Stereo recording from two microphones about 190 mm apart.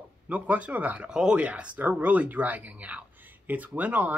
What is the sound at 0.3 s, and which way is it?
A woman's voice, 5° right (ahead or behind).